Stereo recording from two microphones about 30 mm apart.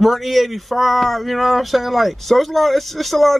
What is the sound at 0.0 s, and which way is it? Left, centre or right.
Speech, centre.